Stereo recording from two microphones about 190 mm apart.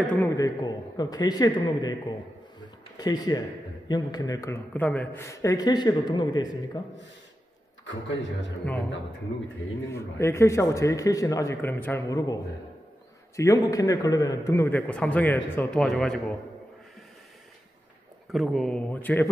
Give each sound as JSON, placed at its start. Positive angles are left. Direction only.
{"t": 0.1, "sound": "a man's voice", "side_deg": 10}
{"t": 0.6, "sound": "a man's voice", "side_deg": 20}
{"t": 3.0, "sound": "a man's voice", "side_deg": 20}
{"t": 7.8, "sound": "a man's voice", "side_deg": 75}
{"t": 9.8, "sound": "a man's voice", "side_deg": 15}
{"t": 13.4, "sound": "a man's voice", "side_deg": 20}
{"t": 18.3, "sound": "speech", "side_deg": 0}